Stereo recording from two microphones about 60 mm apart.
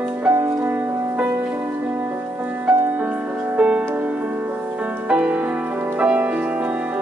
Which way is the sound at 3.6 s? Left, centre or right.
Centre.